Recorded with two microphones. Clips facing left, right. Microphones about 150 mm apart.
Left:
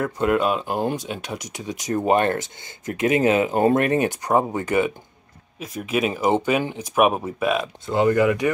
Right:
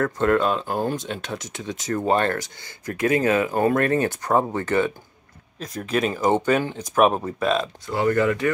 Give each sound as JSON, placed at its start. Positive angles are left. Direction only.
{"t": 0.0, "sound": "speech", "side_deg": 10}